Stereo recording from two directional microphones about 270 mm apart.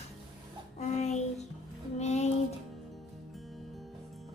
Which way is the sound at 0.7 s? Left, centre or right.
Left.